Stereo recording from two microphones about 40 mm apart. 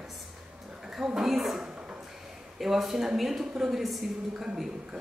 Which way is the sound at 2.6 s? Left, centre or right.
Centre.